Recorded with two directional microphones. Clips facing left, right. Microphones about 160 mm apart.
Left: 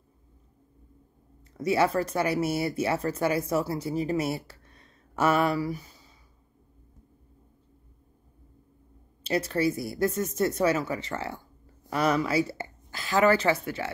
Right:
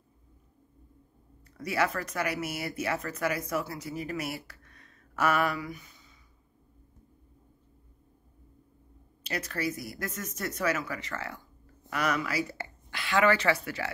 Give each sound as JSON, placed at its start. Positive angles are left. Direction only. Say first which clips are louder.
{"t": 1.6, "sound": "speech", "louder": "left 6 dB", "side_deg": 25}
{"t": 9.2, "sound": "speech", "louder": "left 7 dB", "side_deg": 30}
{"t": 13.0, "sound": "a woman's voice", "louder": "left 3 dB", "side_deg": 40}